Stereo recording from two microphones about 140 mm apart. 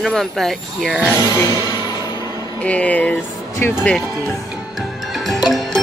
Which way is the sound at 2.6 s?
10° left (ahead or behind).